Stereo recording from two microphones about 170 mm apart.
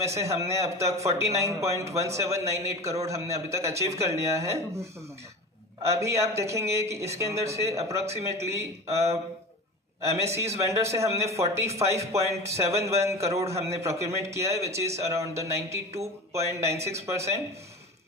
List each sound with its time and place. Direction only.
0.0 s a man's voice: 15° right (ahead or behind)
5.9 s a man's voice: 15° right (ahead or behind)
10.2 s a man's voice: 15° right (ahead or behind)